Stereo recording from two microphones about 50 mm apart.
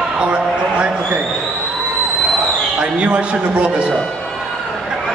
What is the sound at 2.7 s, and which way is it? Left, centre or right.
Speech, right.